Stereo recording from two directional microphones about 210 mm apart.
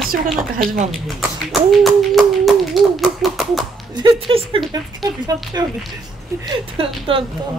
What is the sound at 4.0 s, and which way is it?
Speech, 25° right (ahead or behind).